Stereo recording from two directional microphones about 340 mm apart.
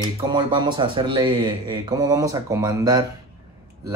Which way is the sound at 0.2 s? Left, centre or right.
Centre.